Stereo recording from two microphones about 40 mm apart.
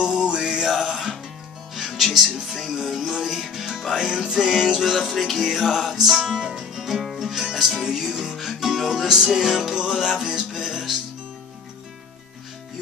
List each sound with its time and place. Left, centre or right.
0.0 s music: centre
2.4 s music: centre